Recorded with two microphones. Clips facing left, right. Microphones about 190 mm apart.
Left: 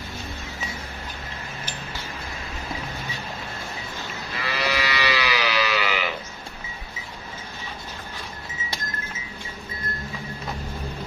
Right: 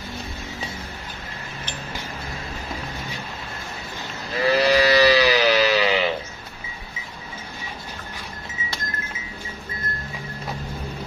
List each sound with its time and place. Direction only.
4.4 s sheep: 40° right (ahead or behind)